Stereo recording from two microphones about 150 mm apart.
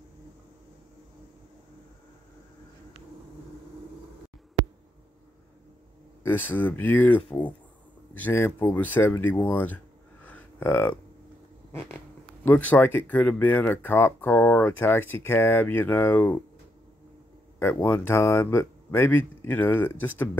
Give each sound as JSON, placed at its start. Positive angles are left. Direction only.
{"t": 6.2, "sound": "speech", "side_deg": 10}
{"t": 7.2, "sound": "speech", "side_deg": 35}
{"t": 8.1, "sound": "speech", "side_deg": 15}
{"t": 10.2, "sound": "a sound", "side_deg": 10}
{"t": 12.4, "sound": "speech", "side_deg": 10}
{"t": 17.6, "sound": "speech", "side_deg": 15}